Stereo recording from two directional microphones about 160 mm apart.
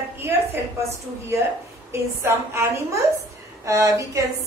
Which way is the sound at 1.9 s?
15° right (ahead or behind).